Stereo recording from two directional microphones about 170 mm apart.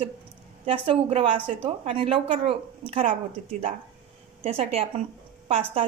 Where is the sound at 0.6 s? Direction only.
30° right (ahead or behind).